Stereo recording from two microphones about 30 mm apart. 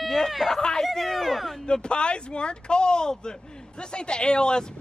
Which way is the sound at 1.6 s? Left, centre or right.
Left.